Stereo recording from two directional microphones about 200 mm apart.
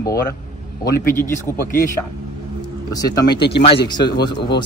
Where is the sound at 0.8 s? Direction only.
10° left (ahead or behind).